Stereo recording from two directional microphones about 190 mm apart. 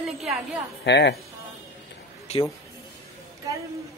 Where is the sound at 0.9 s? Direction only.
65° left (ahead or behind).